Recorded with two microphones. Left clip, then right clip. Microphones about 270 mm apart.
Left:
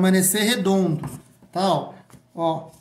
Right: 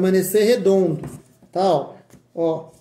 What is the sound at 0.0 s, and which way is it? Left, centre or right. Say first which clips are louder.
Speech: right 2 dB; left.